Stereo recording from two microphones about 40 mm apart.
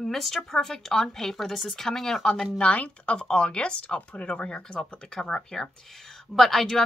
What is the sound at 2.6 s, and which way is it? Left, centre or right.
Speech, left.